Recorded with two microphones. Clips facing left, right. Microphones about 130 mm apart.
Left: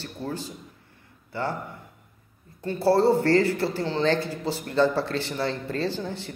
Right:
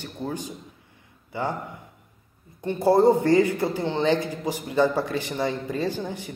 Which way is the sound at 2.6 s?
20° right (ahead or behind).